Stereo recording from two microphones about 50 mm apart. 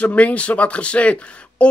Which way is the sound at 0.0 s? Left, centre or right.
Left.